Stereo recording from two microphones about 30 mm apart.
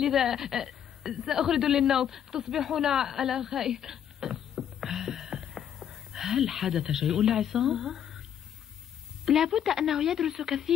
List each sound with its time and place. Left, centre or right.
0.0 s a woman's voice: centre
4.8 s a sound: centre
5.5 s speech: centre
9.2 s a woman's voice: centre